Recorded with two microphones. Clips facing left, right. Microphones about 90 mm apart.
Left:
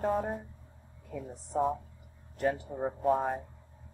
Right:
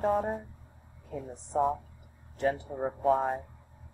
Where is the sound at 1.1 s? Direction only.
25° right (ahead or behind).